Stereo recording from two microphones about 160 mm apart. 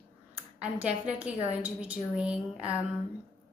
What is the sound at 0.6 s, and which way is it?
A woman's voice, 5° right (ahead or behind).